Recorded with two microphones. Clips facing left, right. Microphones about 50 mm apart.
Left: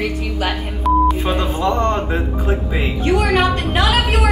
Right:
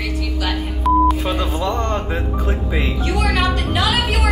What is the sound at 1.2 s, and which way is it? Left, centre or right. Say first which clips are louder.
Speech: left 2 dB; left.